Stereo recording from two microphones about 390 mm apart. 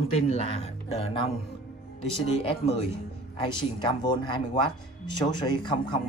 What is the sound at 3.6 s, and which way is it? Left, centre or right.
Speech, centre.